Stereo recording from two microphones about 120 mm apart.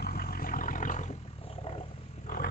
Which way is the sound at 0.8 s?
90° left.